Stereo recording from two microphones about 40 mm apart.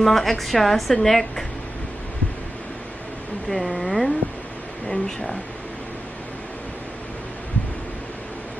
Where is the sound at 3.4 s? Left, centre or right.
Centre.